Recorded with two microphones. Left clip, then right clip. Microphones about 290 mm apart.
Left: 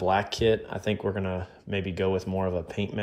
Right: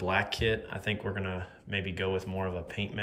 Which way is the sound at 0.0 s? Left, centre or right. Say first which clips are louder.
Left 5 dB; centre.